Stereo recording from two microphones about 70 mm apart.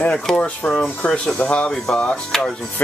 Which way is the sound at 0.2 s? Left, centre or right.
Centre.